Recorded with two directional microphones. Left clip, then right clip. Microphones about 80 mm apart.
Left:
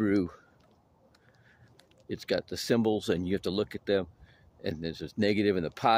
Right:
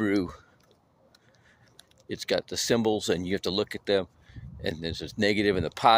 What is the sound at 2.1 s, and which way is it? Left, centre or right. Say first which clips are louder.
Speech: right 3 dB; left.